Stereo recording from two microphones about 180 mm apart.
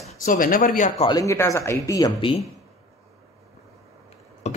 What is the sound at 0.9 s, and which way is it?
Speech, 25° left (ahead or behind).